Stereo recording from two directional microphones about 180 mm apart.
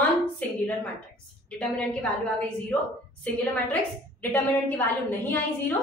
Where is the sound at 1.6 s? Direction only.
5° left (ahead or behind).